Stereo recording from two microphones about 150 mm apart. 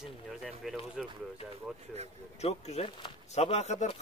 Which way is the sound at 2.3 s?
45° left (ahead or behind).